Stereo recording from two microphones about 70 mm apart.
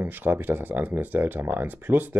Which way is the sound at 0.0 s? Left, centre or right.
Right.